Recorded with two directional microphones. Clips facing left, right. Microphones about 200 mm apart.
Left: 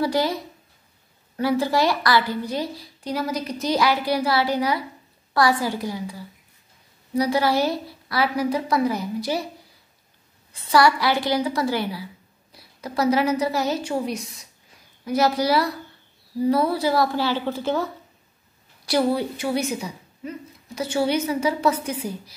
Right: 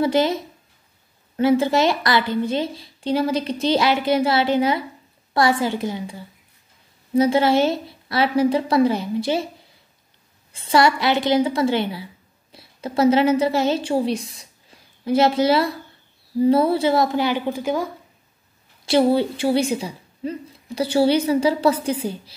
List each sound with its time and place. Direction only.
0.0 s a woman's voice: 25° right (ahead or behind)
10.5 s a woman's voice: 25° right (ahead or behind)
18.9 s a woman's voice: 25° right (ahead or behind)